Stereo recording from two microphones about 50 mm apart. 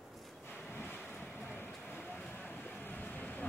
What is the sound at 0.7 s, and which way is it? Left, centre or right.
Vehicle, left.